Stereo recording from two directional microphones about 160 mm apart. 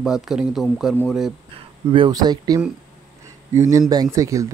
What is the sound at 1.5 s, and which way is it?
Speech, 30° right (ahead or behind).